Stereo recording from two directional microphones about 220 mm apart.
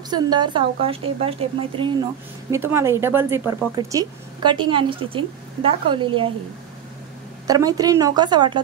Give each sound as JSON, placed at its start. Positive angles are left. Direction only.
{"t": 0.1, "sound": "a woman's voice", "side_deg": -20}
{"t": 2.5, "sound": "speech", "side_deg": -10}
{"t": 7.4, "sound": "speech", "side_deg": -15}